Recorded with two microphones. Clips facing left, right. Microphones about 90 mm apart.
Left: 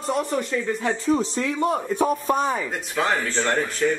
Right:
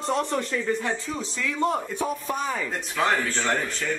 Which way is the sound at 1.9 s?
45° left (ahead or behind).